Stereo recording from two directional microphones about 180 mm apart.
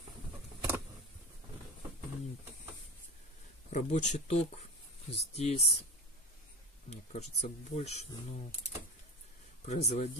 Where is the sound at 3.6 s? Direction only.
40° left (ahead or behind).